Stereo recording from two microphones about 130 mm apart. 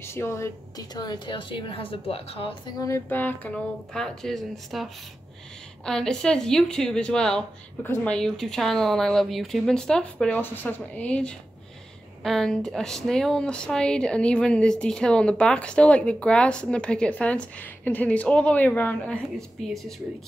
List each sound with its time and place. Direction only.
0.0 s a woman's voice: 20° left (ahead or behind); by 2.7 s 45° left (ahead or behind)
2.8 s a woman's voice: 20° left (ahead or behind); by 19.9 s centre (ahead or behind)